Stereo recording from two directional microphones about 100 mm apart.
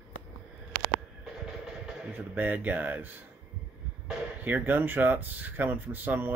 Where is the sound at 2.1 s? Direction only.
20° right (ahead or behind).